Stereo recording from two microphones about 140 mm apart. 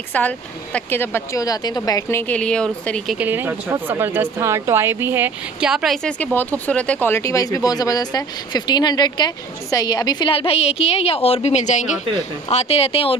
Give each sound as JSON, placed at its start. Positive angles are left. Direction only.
{"t": 0.1, "sound": "a woman's voice", "side_deg": 10}
{"t": 3.2, "sound": "speech", "side_deg": -15}
{"t": 5.7, "sound": "a woman's voice", "side_deg": -5}
{"t": 6.0, "sound": "a woman's voice", "side_deg": 10}
{"t": 12.4, "sound": "speech", "side_deg": 45}